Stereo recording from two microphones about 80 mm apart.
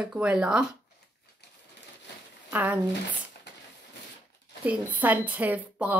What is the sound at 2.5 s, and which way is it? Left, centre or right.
Speech, right.